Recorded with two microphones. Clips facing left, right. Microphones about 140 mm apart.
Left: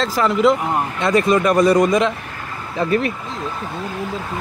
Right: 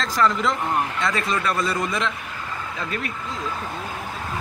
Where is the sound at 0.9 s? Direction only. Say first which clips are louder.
Left 9 dB; 20° left (ahead or behind).